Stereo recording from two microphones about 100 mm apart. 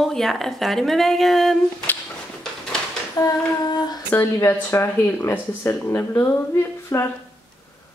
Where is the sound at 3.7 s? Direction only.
45° left (ahead or behind).